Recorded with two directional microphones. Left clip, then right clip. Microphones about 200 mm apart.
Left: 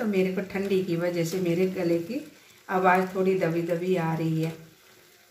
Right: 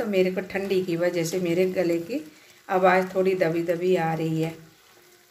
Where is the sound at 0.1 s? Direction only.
45° right (ahead or behind).